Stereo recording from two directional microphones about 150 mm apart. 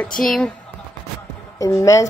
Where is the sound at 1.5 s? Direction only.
20° left (ahead or behind).